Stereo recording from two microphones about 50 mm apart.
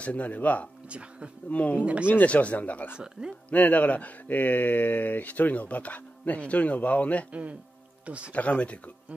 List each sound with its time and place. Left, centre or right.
0.0 s speech: left
0.8 s speech: right
1.5 s speech: left
1.8 s speech: right
2.2 s speech: left
3.0 s speech: centre
3.4 s speech: left
8.0 s speech: right
8.3 s speech: left